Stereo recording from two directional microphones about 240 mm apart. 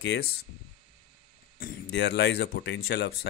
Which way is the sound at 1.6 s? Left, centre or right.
Left.